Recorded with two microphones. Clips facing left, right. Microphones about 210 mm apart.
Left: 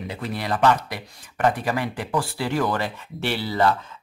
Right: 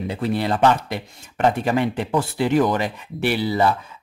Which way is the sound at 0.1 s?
25° right (ahead or behind).